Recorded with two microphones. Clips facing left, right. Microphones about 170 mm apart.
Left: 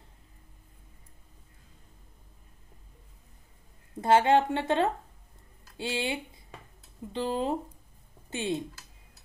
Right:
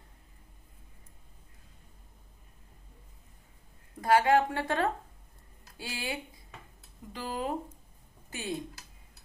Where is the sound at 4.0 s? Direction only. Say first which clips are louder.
Left 2 dB; 25° left (ahead or behind).